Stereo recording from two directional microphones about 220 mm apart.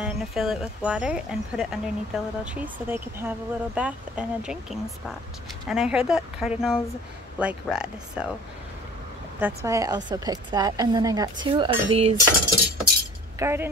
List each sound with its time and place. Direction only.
0.0 s speech: 5° right (ahead or behind)
9.4 s a woman's voice: 15° right (ahead or behind)
13.4 s a woman's voice: 10° right (ahead or behind)